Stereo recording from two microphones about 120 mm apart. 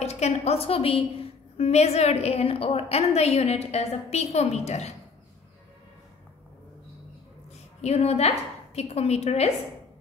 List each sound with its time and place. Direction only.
0.0 s a woman's voice: 65° left (ahead or behind)
7.8 s a woman's voice: 60° left (ahead or behind)